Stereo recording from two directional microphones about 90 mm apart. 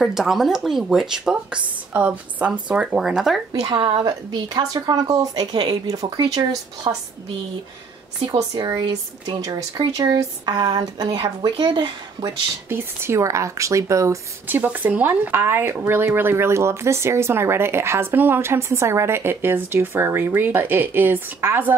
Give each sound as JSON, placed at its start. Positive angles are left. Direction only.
{"t": 0.0, "sound": "speech", "side_deg": -5}
{"t": 3.7, "sound": "speech", "side_deg": -60}
{"t": 8.3, "sound": "speech", "side_deg": -45}
{"t": 9.4, "sound": "speech", "side_deg": -45}
{"t": 11.4, "sound": "speech", "side_deg": -60}
{"t": 12.6, "sound": "speech", "side_deg": -30}
{"t": 14.5, "sound": "speech", "side_deg": -20}